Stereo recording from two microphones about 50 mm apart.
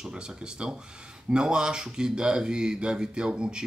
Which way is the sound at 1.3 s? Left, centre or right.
Centre.